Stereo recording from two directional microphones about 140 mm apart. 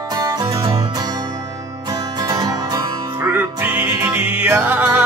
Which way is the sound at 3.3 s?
15° right (ahead or behind).